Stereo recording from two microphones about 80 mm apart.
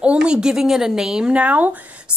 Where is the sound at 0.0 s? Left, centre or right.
Centre.